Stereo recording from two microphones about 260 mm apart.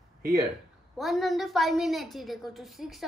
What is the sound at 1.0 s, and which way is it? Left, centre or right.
A woman's voice, centre.